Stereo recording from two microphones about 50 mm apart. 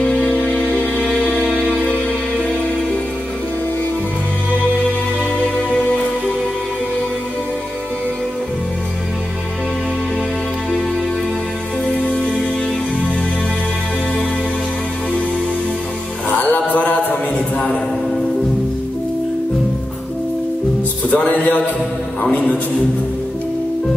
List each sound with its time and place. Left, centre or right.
0.0 s music: left
5.7 s music: left
16.3 s chant: left
21.1 s music: left
22.2 s a sound: left